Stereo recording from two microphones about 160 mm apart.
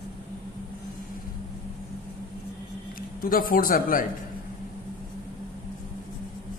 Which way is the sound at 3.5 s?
60° left (ahead or behind).